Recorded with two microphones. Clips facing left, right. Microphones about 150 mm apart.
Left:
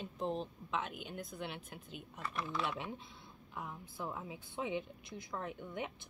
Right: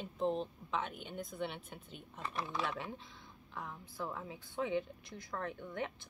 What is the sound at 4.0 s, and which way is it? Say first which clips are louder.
Speech: right 1 dB; 15° left (ahead or behind).